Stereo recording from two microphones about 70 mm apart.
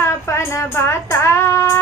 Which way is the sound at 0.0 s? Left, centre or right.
Left.